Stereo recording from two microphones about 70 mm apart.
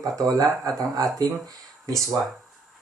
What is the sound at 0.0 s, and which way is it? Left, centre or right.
Speech, right.